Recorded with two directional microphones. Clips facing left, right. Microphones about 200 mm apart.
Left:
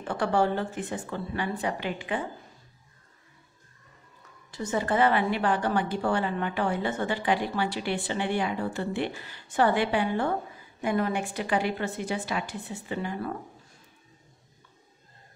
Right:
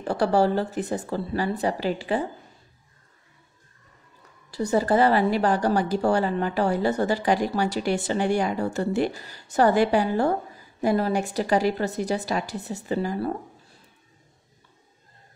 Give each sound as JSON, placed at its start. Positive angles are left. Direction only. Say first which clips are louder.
{"t": 0.0, "sound": "a woman's voice", "louder": "right 4 dB", "side_deg": -35}
{"t": 4.5, "sound": "a woman's voice", "louder": "right 6 dB", "side_deg": -35}